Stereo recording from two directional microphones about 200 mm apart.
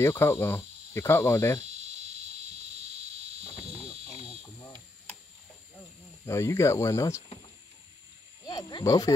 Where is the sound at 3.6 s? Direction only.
30° right (ahead or behind).